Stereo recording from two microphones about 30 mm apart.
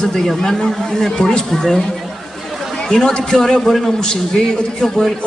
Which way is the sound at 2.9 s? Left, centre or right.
Centre.